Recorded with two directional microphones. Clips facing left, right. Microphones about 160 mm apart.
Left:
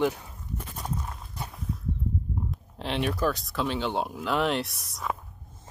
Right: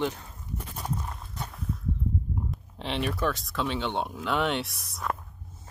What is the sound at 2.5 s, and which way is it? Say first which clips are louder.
Speech: left 2 dB; centre (ahead or behind).